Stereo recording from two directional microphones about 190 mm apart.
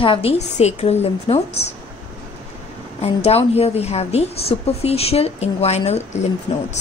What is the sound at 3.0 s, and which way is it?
A woman's voice, 30° left (ahead or behind).